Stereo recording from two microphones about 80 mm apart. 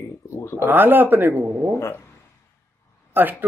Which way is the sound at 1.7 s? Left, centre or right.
Left.